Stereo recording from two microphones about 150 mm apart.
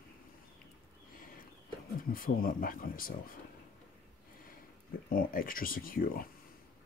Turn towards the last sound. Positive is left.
turn(degrees=70)  # may be behind; listen again after turning